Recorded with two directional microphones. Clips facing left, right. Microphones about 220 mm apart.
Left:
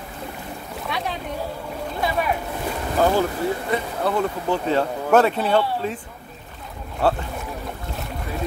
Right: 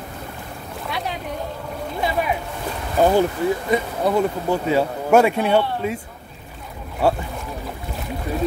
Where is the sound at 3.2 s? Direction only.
15° right (ahead or behind).